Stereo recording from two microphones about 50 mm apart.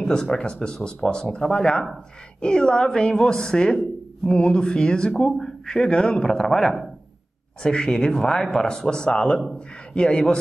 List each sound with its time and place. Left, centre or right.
0.0 s speech: centre
6.2 s speech: centre